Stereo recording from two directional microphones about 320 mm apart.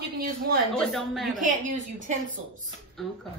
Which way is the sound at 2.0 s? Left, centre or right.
Right.